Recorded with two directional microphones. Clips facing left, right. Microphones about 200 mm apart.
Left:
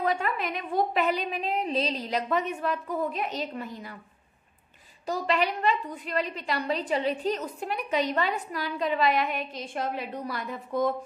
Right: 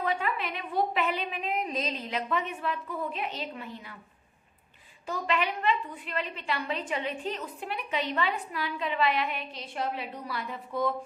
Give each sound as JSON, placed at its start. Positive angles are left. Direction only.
{"t": 0.0, "sound": "a woman's voice", "side_deg": 45}
{"t": 5.0, "sound": "a woman's voice", "side_deg": 35}